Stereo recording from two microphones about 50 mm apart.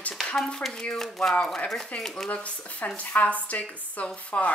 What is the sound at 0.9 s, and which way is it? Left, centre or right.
Speech, centre.